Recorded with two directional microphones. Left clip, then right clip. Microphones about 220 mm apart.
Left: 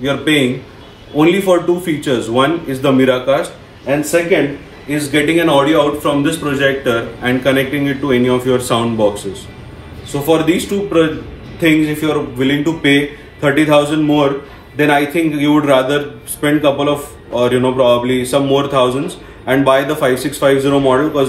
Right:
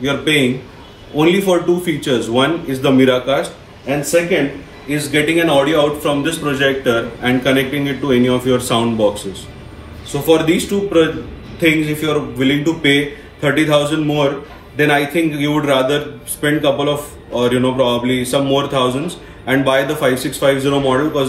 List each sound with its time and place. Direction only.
0.0 s speech: 5° left (ahead or behind)
1.4 s speech: centre (ahead or behind)
2.0 s a man's voice: 10° left (ahead or behind)
10.2 s a man's voice: 10° left (ahead or behind)